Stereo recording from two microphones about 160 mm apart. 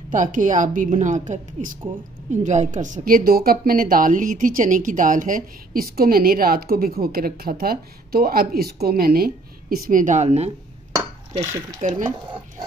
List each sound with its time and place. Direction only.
0.1 s a woman's voice: 55° right (ahead or behind)
11.8 s a woman's voice: 50° right (ahead or behind)